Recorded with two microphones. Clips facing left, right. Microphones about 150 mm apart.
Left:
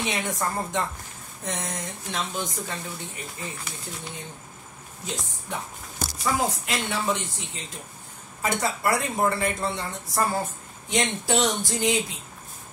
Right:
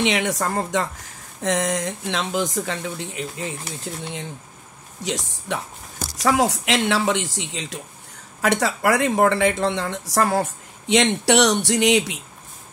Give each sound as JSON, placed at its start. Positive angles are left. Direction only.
{"t": 0.0, "sound": "speech", "side_deg": -90}
{"t": 5.0, "sound": "speech", "side_deg": -90}